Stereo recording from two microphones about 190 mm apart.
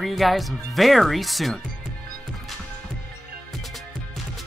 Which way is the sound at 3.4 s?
Centre (ahead or behind).